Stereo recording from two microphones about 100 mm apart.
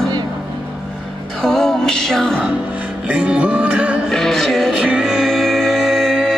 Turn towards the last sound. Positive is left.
turn(degrees=0)  # may be behind; listen again after turning